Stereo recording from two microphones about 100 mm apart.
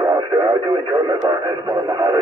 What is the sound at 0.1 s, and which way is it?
Radio, 40° right (ahead or behind).